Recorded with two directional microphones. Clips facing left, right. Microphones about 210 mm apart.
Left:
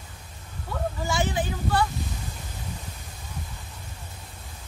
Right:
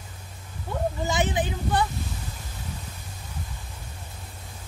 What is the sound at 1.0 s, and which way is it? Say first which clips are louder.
Speech: even; 20° right (ahead or behind).